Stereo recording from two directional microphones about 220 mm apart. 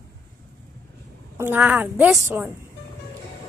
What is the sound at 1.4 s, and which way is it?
A woman's voice, 10° right (ahead or behind).